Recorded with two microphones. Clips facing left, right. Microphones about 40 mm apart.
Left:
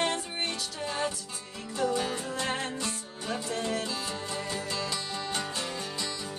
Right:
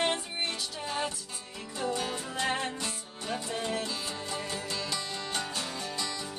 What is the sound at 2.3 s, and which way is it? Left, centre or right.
Music, centre.